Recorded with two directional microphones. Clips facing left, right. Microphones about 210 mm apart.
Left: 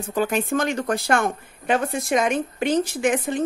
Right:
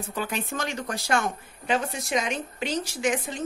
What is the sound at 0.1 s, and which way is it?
Speech, 45° left (ahead or behind).